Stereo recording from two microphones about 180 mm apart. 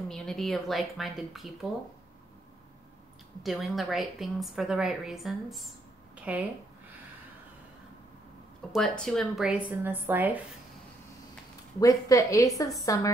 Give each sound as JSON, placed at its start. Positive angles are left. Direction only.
{"t": 0.1, "sound": "a woman's voice", "side_deg": 0}
{"t": 3.4, "sound": "a woman's voice", "side_deg": 0}
{"t": 6.1, "sound": "a sound", "side_deg": -5}
{"t": 8.7, "sound": "a woman's voice", "side_deg": 5}
{"t": 11.8, "sound": "a woman's voice", "side_deg": 20}